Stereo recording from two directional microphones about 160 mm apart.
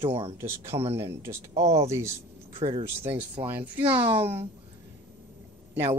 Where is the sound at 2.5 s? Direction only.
35° right (ahead or behind).